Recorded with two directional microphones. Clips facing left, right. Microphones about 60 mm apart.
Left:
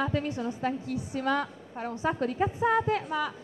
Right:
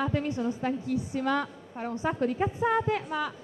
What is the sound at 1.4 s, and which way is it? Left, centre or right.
A woman's voice, centre.